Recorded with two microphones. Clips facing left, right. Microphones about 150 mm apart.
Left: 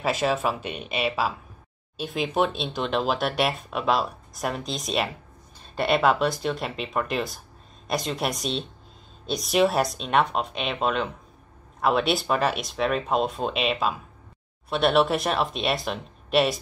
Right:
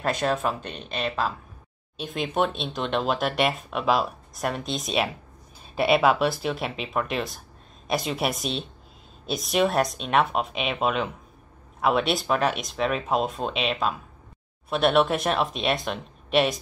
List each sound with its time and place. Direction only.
0.0 s speech: 5° left (ahead or behind)